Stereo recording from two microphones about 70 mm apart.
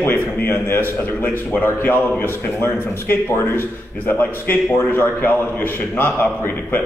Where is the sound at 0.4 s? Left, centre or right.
Left.